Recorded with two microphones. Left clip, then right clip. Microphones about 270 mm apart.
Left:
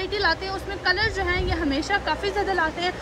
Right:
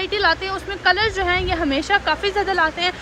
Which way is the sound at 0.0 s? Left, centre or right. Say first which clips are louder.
Right 5 dB; centre.